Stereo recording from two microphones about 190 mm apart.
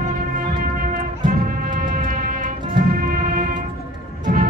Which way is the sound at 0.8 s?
45° right (ahead or behind).